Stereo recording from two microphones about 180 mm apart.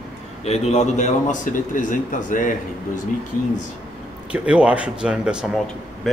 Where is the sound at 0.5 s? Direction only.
35° left (ahead or behind).